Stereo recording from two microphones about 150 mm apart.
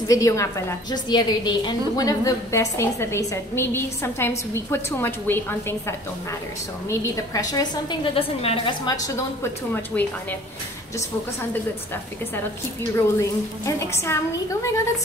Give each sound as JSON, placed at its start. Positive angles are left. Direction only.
{"t": 0.1, "sound": "a woman's voice", "side_deg": 20}
{"t": 8.8, "sound": "a woman's voice", "side_deg": 25}
{"t": 12.9, "sound": "a woman's voice", "side_deg": 20}